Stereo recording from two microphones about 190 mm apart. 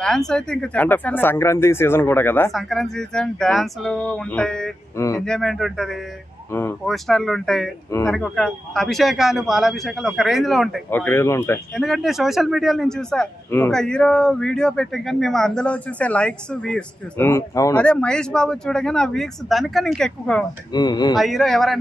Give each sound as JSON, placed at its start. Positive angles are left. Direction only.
{"t": 0.0, "sound": "speech", "side_deg": 0}
{"t": 4.9, "sound": "speech", "side_deg": 15}
{"t": 5.2, "sound": "speech", "side_deg": 0}
{"t": 6.5, "sound": "speech", "side_deg": 10}
{"t": 10.9, "sound": "speech", "side_deg": 10}
{"t": 11.7, "sound": "speech", "side_deg": 0}
{"t": 17.7, "sound": "speech", "side_deg": 5}
{"t": 20.7, "sound": "speech", "side_deg": 20}
{"t": 21.2, "sound": "speech", "side_deg": 0}